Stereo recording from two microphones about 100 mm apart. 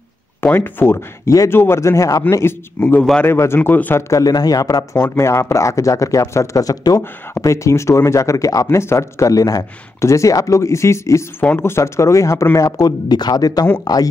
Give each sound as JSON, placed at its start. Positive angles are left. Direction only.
{"t": 0.4, "sound": "speech", "side_deg": 20}
{"t": 2.8, "sound": "speech", "side_deg": 15}
{"t": 4.1, "sound": "speech", "side_deg": 40}